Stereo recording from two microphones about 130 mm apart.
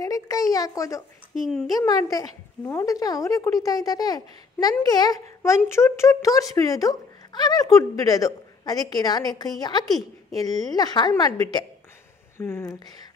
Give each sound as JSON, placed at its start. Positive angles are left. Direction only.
{"t": 0.0, "sound": "speech", "side_deg": 30}
{"t": 1.3, "sound": "a child's voice", "side_deg": -5}
{"t": 1.7, "sound": "speech", "side_deg": 30}
{"t": 12.4, "sound": "speech", "side_deg": 20}